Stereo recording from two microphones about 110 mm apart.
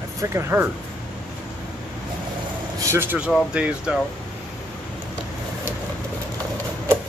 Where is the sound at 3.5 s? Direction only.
10° right (ahead or behind).